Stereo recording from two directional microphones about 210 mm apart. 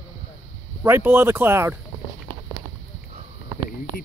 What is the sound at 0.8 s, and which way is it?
Speech, 10° right (ahead or behind).